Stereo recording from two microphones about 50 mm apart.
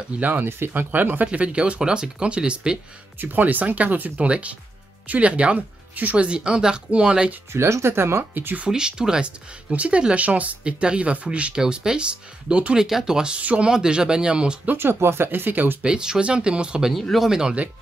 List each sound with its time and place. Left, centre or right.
0.2 s speech: right
0.5 s speech: right
0.9 s speech: right; by 2.8 s centre
3.2 s speech: right
7.5 s speech: right
8.2 s speech: right
8.6 s speech: centre
9.7 s speech: right
12.8 s speech: centre
13.4 s speech: right
13.7 s speech: centre
14.8 s speech: right
15.8 s speech: centre